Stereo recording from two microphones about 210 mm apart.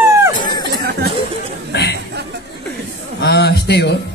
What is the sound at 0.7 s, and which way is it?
Music, 50° right (ahead or behind).